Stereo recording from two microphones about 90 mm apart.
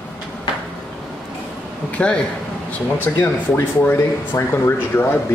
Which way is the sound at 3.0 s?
20° left (ahead or behind).